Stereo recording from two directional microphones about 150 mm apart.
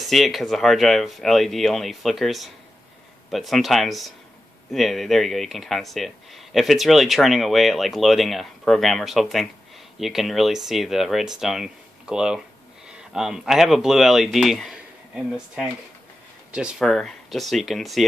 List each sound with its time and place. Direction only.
0.0 s speech: centre (ahead or behind)